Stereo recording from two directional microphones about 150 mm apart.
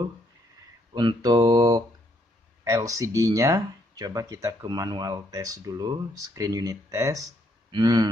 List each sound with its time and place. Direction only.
0.9 s speech: 30° right (ahead or behind)